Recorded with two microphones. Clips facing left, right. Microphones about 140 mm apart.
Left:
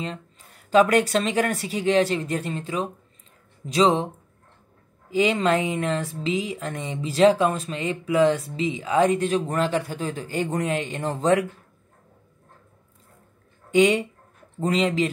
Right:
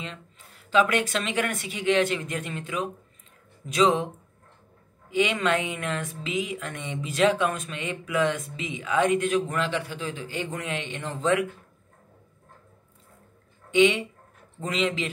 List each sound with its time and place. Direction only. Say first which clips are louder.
0.7 s speech: left 5 dB; 40° left (ahead or behind)
5.1 s speech: left 3 dB; 35° left (ahead or behind)
13.7 s speech: left 2 dB; 40° left (ahead or behind)